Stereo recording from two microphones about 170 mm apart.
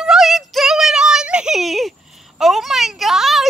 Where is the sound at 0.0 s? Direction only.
Centre (ahead or behind).